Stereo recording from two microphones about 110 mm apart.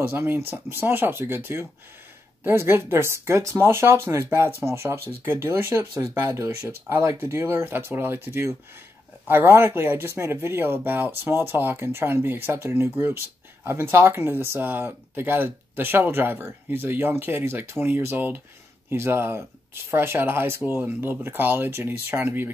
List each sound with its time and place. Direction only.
0.0 s speech: 20° right (ahead or behind)